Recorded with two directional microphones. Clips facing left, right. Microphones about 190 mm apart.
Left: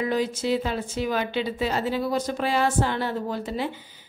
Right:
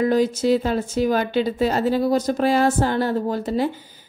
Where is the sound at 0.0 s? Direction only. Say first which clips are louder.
Right 7 dB; 40° right (ahead or behind).